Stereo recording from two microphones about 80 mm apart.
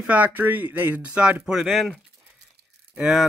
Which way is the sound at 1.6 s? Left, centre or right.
Centre.